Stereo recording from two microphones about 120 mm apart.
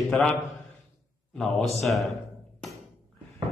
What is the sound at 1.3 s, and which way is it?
Speech, 5° left (ahead or behind).